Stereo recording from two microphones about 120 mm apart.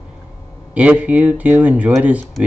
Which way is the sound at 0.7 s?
10° right (ahead or behind).